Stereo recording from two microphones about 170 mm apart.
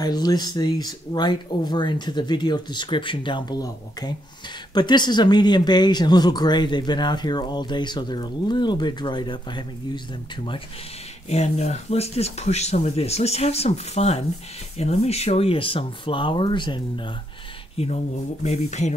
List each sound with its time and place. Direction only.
0.0 s speech: 25° left (ahead or behind)
11.2 s speech: 40° left (ahead or behind)